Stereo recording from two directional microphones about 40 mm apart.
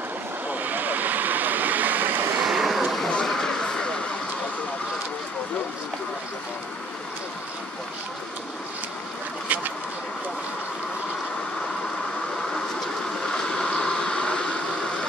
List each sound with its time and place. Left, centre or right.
0.5 s vehicle: right
2.4 s vehicle: centre
2.8 s a sound: centre
3.1 s vehicle: centre
13.2 s a sound: centre
13.7 s vehicle: centre